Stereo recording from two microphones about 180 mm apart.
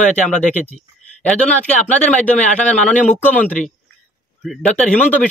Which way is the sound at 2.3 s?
40° left (ahead or behind).